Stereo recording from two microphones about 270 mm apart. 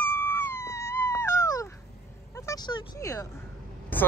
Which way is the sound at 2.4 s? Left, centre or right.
Centre.